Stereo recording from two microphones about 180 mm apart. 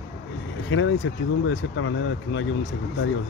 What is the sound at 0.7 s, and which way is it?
Speech, 90° left.